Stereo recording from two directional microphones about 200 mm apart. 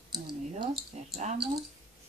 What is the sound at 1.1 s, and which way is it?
Speech, 35° right (ahead or behind).